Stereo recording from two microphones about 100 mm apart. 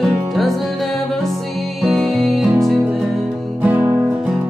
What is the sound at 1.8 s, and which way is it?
Music, centre (ahead or behind).